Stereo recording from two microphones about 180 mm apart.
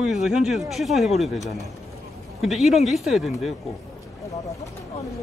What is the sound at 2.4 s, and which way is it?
Speech, centre (ahead or behind).